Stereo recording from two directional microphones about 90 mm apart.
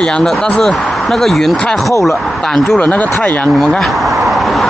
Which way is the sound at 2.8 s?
15° left (ahead or behind).